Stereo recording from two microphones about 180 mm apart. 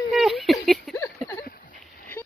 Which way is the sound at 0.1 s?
Centre (ahead or behind).